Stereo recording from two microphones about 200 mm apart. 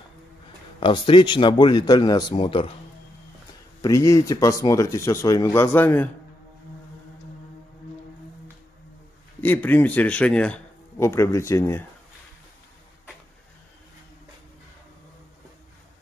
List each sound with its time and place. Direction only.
0.7 s speech: 25° left (ahead or behind)
3.8 s speech: 15° left (ahead or behind)
9.4 s speech: 10° left (ahead or behind)